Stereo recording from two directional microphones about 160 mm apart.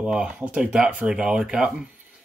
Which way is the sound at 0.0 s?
5° right (ahead or behind).